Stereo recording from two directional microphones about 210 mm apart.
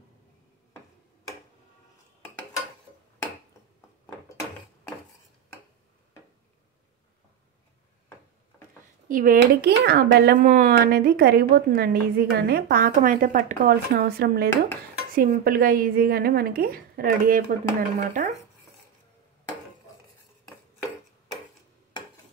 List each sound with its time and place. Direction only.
9.1 s speech: 40° right (ahead or behind)